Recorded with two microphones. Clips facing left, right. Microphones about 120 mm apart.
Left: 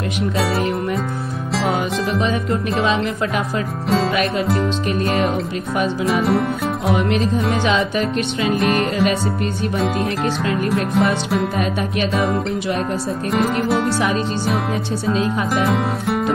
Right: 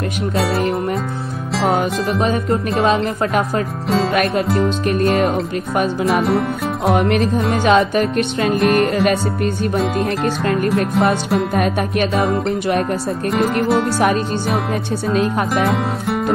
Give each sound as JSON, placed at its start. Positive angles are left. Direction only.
{"t": 1.5, "sound": "music", "side_deg": 0}
{"t": 3.9, "sound": "music", "side_deg": 0}
{"t": 7.0, "sound": "music", "side_deg": -55}
{"t": 8.5, "sound": "music", "side_deg": 0}
{"t": 10.5, "sound": "music", "side_deg": 0}
{"t": 11.5, "sound": "music", "side_deg": -55}
{"t": 13.3, "sound": "music", "side_deg": 0}
{"t": 15.0, "sound": "music", "side_deg": 0}